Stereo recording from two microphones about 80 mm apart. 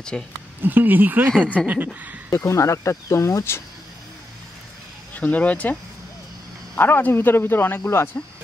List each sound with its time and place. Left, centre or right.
0.1 s speech: centre
0.6 s speech: right
2.3 s speech: left
5.1 s speech: centre; by 8.2 s left